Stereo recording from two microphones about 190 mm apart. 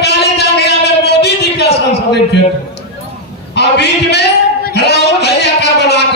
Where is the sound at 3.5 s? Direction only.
60° left (ahead or behind).